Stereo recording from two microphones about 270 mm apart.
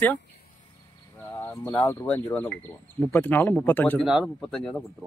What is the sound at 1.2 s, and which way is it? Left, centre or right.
Speech, centre.